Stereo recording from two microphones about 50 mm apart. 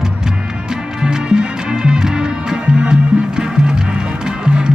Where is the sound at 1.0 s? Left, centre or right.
Centre.